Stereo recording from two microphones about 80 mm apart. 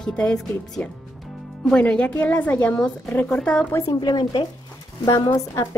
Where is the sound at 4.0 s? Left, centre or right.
Left.